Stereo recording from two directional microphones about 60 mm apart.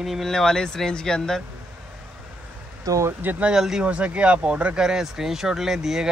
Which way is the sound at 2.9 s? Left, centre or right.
Right.